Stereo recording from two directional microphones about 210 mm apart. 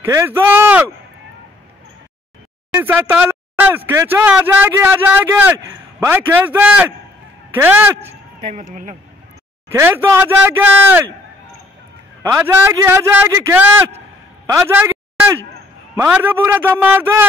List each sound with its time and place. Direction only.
0.0 s speech: 15° right (ahead or behind)
2.7 s speech: 10° right (ahead or behind)
8.0 s a sound: 30° right (ahead or behind)
9.8 s speech: 10° right (ahead or behind)
12.2 s speech: 10° right (ahead or behind)
14.4 s a sound: 15° right (ahead or behind)
16.0 s speech: 10° right (ahead or behind)